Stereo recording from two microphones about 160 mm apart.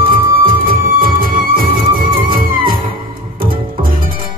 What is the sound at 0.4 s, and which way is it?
Music, 60° right (ahead or behind).